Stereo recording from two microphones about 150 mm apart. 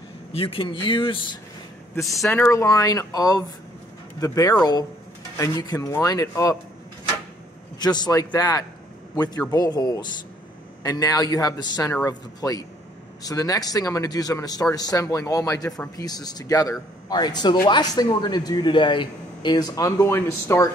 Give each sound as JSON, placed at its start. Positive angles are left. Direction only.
{"t": 0.3, "sound": "a man's voice", "side_deg": 40}
{"t": 2.2, "sound": "a man's voice", "side_deg": 20}
{"t": 7.8, "sound": "a man's voice", "side_deg": 25}